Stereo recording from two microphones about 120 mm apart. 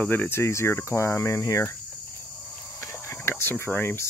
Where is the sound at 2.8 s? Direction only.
20° left (ahead or behind).